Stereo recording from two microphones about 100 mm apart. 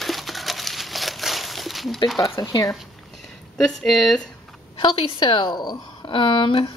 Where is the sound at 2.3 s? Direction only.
35° left (ahead or behind).